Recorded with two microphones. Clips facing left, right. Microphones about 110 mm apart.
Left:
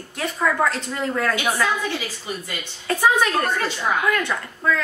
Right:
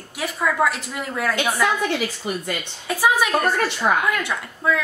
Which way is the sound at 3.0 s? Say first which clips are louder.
Even; 10° right (ahead or behind).